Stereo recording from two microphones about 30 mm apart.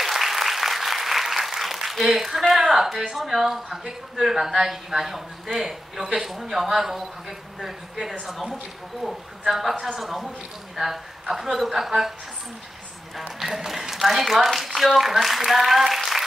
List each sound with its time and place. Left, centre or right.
0.0 s applause: centre
2.6 s a man's voice: centre
13.4 s a woman's voice: centre